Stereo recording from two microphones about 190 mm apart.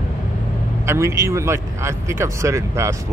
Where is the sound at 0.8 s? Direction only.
15° right (ahead or behind).